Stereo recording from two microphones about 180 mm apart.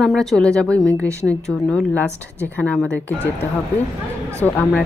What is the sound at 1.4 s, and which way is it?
Speech, 5° left (ahead or behind).